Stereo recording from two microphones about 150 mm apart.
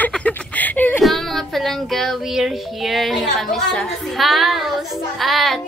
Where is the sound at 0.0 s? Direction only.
10° left (ahead or behind).